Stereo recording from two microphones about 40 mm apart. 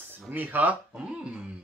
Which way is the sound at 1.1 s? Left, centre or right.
Right.